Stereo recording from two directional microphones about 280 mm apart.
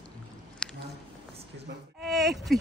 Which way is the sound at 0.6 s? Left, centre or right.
Centre.